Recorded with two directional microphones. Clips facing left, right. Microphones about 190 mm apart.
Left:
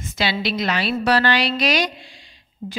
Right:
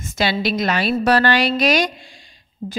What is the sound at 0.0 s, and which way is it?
Speech, 45° right (ahead or behind).